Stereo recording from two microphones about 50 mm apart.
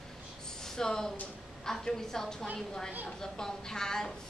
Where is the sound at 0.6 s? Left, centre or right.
Centre.